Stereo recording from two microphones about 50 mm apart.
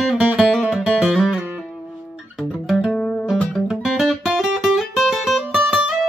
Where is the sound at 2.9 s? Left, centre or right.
Centre.